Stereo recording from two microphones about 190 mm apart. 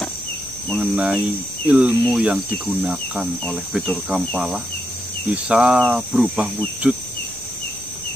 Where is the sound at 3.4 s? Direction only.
Centre (ahead or behind).